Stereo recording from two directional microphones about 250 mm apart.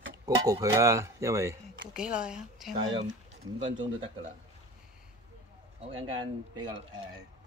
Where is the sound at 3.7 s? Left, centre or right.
Centre.